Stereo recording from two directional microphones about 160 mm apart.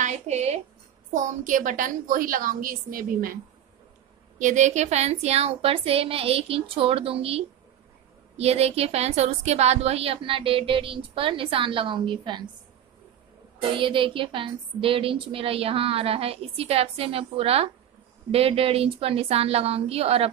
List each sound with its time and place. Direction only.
0.0 s a woman's voice: 45° right (ahead or behind); by 3.3 s 65° right (ahead or behind)
4.4 s a woman's voice: 50° right (ahead or behind); by 12.4 s 30° right (ahead or behind)
13.6 s a woman's voice: 30° right (ahead or behind)